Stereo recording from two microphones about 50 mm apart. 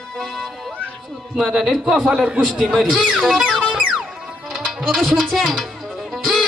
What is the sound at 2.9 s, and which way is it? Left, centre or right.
Speech, right.